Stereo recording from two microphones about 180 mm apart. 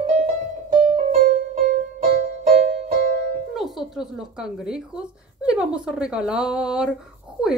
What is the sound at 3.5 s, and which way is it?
Speech, centre (ahead or behind).